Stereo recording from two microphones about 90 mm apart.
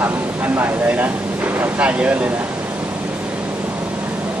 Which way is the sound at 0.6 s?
20° right (ahead or behind).